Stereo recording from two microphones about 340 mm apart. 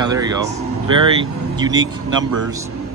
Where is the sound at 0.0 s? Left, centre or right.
Centre.